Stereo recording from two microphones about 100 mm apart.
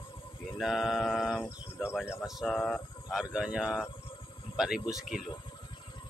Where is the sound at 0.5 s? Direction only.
Centre (ahead or behind).